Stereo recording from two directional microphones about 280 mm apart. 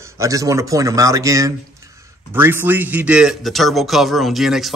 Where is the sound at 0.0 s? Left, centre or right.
Centre.